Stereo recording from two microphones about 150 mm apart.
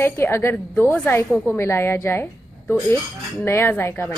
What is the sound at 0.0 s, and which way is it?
Speech, 15° left (ahead or behind).